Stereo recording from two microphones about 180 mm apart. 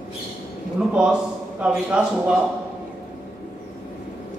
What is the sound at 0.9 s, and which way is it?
A man's voice, 5° right (ahead or behind).